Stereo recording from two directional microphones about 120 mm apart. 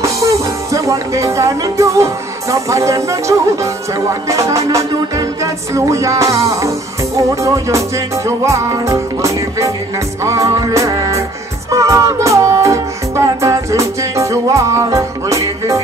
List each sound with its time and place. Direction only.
0.0 s music: 25° right (ahead or behind)